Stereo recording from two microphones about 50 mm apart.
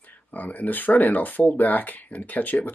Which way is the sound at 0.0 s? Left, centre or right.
Left.